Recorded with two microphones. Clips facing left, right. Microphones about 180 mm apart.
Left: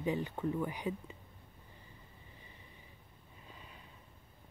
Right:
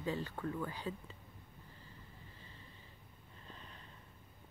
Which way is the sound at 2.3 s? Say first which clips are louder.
Even; 15° left (ahead or behind).